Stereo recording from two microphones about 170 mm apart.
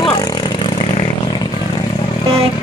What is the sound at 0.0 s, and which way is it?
Vehicle, 25° left (ahead or behind).